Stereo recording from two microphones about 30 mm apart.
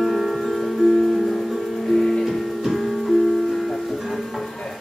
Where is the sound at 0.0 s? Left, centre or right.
Centre.